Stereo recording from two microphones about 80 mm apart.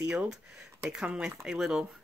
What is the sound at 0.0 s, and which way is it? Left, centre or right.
Speech, centre.